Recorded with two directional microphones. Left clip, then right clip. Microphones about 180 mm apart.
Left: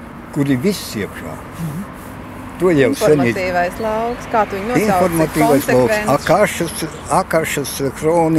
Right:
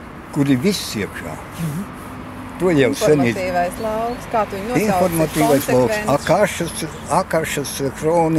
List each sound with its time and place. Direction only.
0.4 s speech: centre (ahead or behind)
2.6 s speech: centre (ahead or behind)